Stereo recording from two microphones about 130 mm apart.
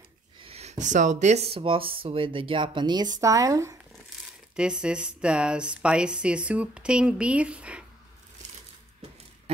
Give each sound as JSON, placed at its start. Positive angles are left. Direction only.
{"t": 0.4, "sound": "speech", "side_deg": -50}
{"t": 4.6, "sound": "speech", "side_deg": -5}